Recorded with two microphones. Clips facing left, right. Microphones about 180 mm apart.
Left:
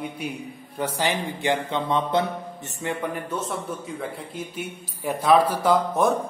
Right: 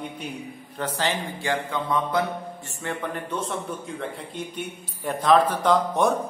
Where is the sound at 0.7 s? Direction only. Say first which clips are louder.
Left 2 dB; 10° left (ahead or behind).